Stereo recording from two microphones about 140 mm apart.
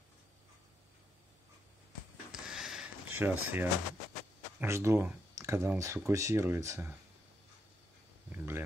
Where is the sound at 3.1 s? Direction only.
15° right (ahead or behind).